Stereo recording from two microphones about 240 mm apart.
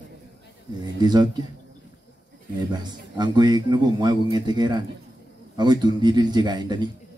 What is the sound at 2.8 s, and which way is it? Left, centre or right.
Speech, centre.